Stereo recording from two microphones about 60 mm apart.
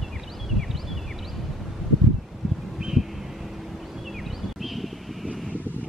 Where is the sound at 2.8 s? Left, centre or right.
Centre.